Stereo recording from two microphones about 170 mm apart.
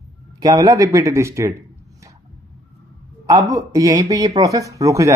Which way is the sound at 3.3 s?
20° right (ahead or behind).